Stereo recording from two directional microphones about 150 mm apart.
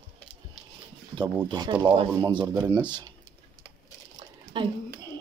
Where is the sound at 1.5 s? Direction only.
30° right (ahead or behind).